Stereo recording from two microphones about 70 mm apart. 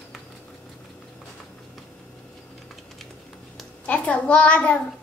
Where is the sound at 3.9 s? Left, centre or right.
Centre.